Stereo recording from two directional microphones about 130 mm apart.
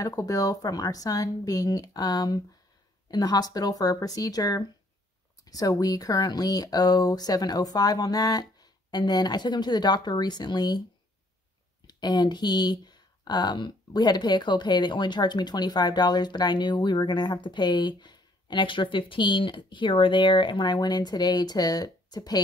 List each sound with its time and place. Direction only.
0.0 s speech: 25° left (ahead or behind)
11.8 s speech: 35° left (ahead or behind)